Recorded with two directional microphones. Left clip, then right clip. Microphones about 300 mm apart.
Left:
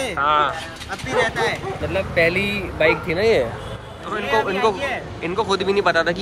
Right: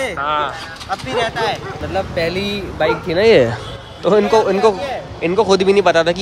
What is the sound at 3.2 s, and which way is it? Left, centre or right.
Speech, right.